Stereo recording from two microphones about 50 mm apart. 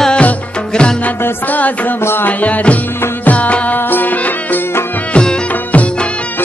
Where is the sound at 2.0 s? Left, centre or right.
Left.